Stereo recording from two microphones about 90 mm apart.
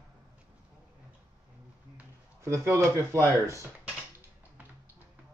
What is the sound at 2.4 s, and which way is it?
Speech, 30° right (ahead or behind).